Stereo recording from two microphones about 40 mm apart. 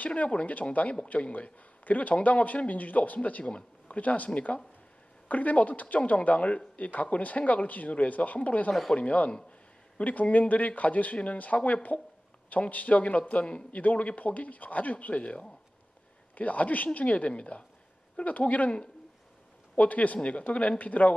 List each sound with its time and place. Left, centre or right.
0.0 s speech: left
19.8 s speech: left